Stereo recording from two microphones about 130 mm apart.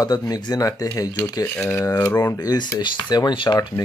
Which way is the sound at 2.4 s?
30° left (ahead or behind).